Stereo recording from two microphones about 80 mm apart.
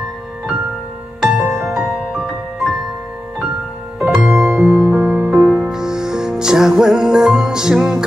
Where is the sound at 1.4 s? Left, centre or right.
Centre.